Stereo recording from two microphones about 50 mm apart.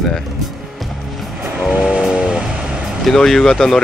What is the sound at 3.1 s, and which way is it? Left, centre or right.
Speech, centre.